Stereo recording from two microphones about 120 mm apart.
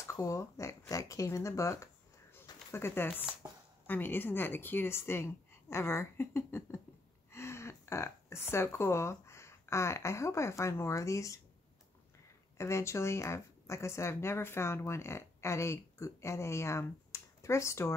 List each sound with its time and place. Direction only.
0.1 s a woman's voice: 25° left (ahead or behind)
3.4 s a sound: 25° right (ahead or behind)
3.8 s a woman's voice: 15° left (ahead or behind)
12.5 s speech: 25° left (ahead or behind)